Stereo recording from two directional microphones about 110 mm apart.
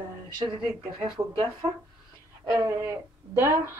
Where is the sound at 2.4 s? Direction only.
30° right (ahead or behind).